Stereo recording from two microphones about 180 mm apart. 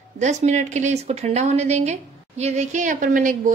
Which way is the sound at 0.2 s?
40° right (ahead or behind).